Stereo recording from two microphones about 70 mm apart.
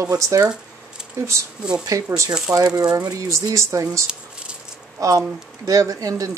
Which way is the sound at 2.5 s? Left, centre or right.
Right.